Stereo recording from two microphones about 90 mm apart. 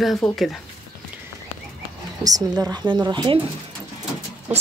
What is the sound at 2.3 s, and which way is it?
Speech, 40° right (ahead or behind).